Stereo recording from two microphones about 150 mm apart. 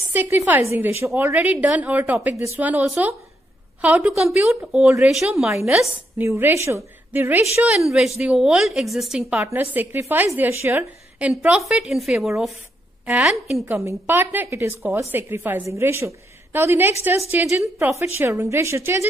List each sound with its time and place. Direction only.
0.1 s a woman's voice: 10° right (ahead or behind)
6.2 s a woman's voice: 15° right (ahead or behind)
9.4 s a woman's voice: 15° right (ahead or behind)
13.7 s a woman's voice: 15° right (ahead or behind)